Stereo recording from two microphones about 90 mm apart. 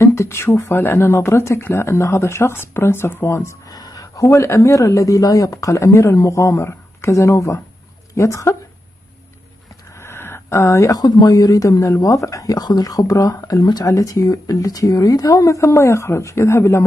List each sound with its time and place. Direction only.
0.0 s speech: 30° left (ahead or behind)
3.7 s speech: 45° left (ahead or behind)
9.9 s speech: 25° left (ahead or behind)